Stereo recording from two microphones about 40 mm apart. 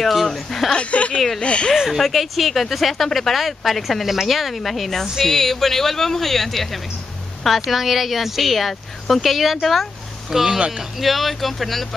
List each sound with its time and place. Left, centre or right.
0.0 s speech: centre
0.7 s speech: left
1.8 s speech: centre
10.3 s speech: centre
11.0 s speech: centre